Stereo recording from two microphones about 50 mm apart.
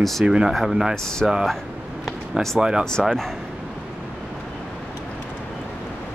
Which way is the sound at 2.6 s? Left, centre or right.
Centre.